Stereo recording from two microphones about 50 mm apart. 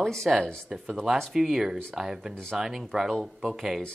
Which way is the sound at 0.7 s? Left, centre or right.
Centre.